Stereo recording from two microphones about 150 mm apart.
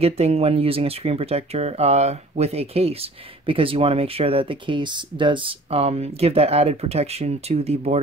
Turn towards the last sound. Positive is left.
turn(degrees=-45)  # may be behind; listen again after turning